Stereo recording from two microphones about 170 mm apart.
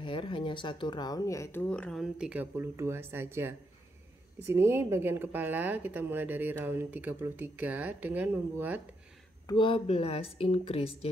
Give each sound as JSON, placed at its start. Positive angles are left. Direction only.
{"t": 0.0, "sound": "a woman's voice", "side_deg": 30}
{"t": 9.5, "sound": "speech", "side_deg": 30}